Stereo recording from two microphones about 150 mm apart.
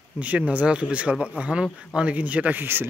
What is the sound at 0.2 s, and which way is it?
Speech, 10° right (ahead or behind).